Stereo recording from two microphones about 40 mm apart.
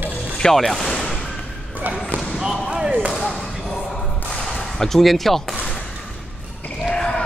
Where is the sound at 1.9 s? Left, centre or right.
Right.